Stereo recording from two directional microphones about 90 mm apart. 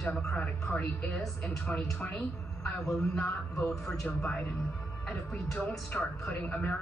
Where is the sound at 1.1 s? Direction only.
5° left (ahead or behind).